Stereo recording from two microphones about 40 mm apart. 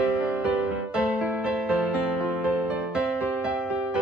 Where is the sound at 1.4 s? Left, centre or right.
Right.